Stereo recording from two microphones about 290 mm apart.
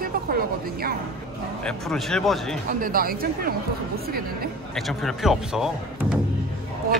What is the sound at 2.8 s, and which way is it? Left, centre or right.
Speech, right.